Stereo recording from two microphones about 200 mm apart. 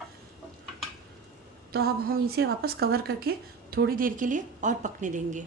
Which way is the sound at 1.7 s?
50° right (ahead or behind).